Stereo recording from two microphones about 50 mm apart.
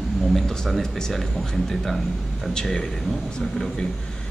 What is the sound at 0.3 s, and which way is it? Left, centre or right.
Speech, centre.